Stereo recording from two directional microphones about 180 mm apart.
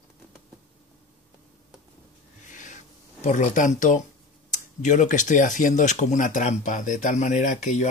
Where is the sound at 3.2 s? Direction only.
45° left (ahead or behind).